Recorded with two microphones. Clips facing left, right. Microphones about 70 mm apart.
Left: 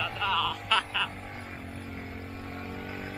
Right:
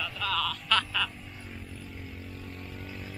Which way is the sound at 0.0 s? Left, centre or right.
Centre.